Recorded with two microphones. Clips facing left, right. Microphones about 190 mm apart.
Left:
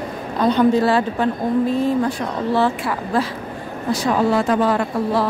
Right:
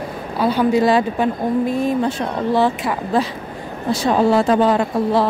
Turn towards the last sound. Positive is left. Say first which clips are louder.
# right 2 dB
turn(degrees=-25)  # may be behind; listen again after turning